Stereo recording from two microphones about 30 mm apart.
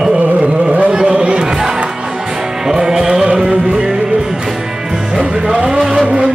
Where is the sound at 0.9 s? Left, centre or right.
Right.